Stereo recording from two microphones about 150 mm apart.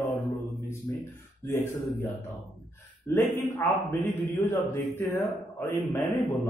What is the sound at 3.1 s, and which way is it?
A man's voice, 15° left (ahead or behind).